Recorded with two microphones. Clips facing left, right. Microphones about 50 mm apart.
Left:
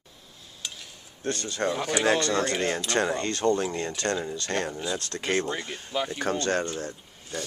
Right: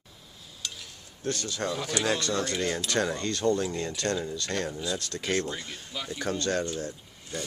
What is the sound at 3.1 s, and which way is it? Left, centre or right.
Speech, left.